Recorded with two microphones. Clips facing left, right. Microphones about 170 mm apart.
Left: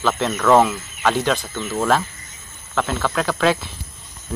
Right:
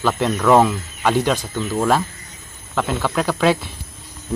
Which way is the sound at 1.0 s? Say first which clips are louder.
Right 1 dB; 10° right (ahead or behind).